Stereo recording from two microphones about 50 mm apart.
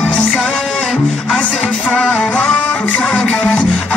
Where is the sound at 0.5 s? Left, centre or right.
Centre.